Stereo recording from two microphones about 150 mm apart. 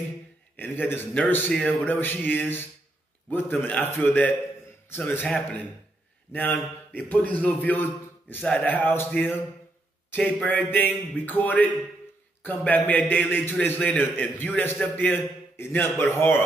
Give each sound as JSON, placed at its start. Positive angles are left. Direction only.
{"t": 0.6, "sound": "a man's voice", "side_deg": 10}